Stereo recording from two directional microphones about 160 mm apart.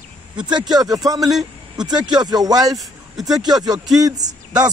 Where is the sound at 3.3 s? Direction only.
25° right (ahead or behind).